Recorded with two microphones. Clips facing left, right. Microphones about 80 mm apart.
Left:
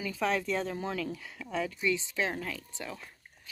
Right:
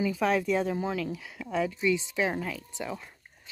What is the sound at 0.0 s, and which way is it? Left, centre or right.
Speech, centre.